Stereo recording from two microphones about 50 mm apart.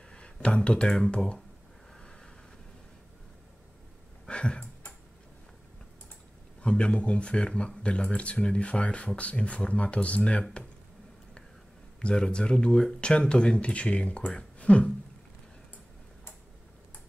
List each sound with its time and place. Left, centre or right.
0.1 s speech: left
2.0 s vehicle: centre
4.3 s a sound: left
6.6 s speech: left
12.0 s speech: left